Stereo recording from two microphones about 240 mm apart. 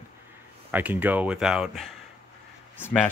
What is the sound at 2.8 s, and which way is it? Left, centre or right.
Speech, centre.